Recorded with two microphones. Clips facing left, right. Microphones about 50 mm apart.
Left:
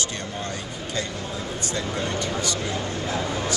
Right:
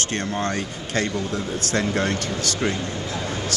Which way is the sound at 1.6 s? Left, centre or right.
Right.